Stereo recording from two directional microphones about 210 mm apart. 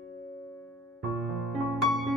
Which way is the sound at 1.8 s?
Centre (ahead or behind).